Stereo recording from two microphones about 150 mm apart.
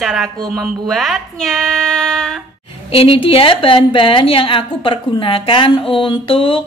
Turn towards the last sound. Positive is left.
turn(degrees=40)  # may be behind; listen again after turning